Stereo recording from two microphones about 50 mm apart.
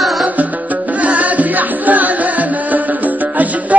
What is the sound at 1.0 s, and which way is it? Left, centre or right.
Music, right.